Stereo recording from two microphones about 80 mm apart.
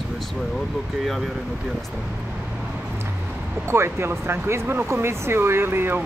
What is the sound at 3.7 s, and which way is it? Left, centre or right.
Speech, right.